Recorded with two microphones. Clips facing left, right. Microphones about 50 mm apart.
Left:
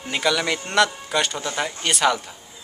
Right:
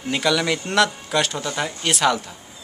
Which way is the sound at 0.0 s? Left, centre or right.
Centre.